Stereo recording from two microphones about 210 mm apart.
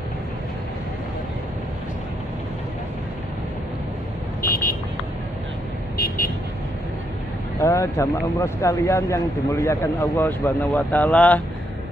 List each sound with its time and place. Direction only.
4.4 s vehicle: 45° left (ahead or behind)
5.9 s vehicle: 45° left (ahead or behind)
7.6 s a man's voice: 15° left (ahead or behind)